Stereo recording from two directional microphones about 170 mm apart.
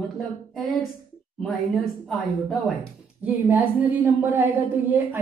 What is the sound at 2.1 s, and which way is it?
Speech, centre (ahead or behind).